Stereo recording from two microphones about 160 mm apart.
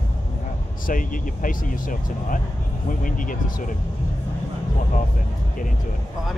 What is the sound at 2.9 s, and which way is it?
Speech, 55° left (ahead or behind).